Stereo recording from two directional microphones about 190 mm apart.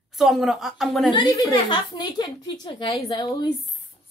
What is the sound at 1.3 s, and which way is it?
A woman's voice, 20° left (ahead or behind).